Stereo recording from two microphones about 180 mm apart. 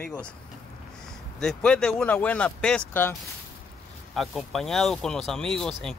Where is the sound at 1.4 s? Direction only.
5° left (ahead or behind).